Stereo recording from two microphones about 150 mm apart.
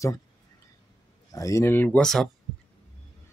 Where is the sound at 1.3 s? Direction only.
20° left (ahead or behind).